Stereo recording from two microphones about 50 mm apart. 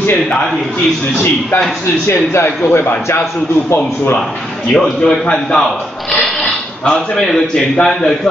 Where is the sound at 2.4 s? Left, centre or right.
Left.